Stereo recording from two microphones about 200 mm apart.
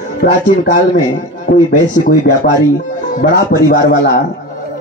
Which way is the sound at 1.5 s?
40° left (ahead or behind).